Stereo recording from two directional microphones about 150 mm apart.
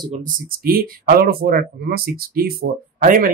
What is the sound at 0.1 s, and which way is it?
Speech, 65° right (ahead or behind).